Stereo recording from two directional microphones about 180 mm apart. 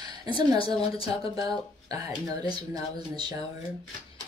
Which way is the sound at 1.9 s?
20° right (ahead or behind).